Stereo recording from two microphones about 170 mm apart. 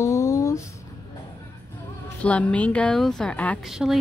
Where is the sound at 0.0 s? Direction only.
20° left (ahead or behind).